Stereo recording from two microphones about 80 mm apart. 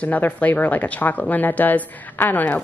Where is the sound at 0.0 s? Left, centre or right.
Centre.